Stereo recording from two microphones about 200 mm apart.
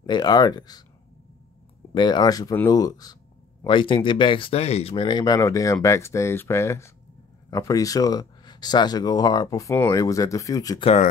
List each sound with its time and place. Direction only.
0.0 s speech: 20° left (ahead or behind)
2.0 s speech: 20° left (ahead or behind)